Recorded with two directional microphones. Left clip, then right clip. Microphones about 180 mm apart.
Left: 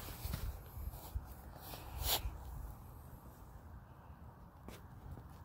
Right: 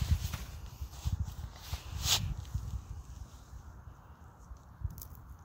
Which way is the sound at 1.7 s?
25° left (ahead or behind).